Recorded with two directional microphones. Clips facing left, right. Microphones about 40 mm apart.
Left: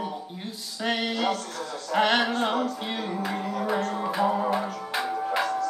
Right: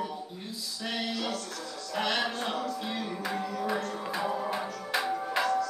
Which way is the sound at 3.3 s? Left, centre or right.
Left.